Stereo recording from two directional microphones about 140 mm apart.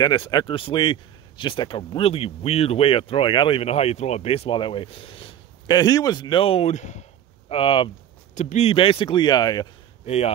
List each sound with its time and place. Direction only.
0.0 s a man's voice: 30° left (ahead or behind); by 7.5 s 55° left (ahead or behind)
7.5 s a man's voice: 40° left (ahead or behind)
8.4 s a man's voice: 55° left (ahead or behind); by 9.7 s 30° left (ahead or behind)
10.0 s speech: 50° left (ahead or behind)